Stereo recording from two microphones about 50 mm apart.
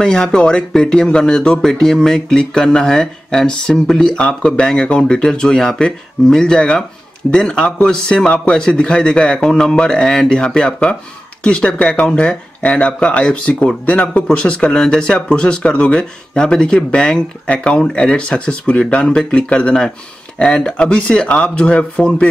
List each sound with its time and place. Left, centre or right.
0.0 s speech: centre; by 22.3 s left